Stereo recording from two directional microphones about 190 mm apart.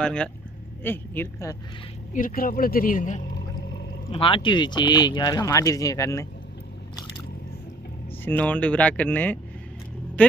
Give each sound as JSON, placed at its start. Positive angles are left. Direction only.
{"t": 0.0, "sound": "speech", "side_deg": 5}
{"t": 2.1, "sound": "speech", "side_deg": 45}
{"t": 4.1, "sound": "speech", "side_deg": 25}
{"t": 8.3, "sound": "speech", "side_deg": 10}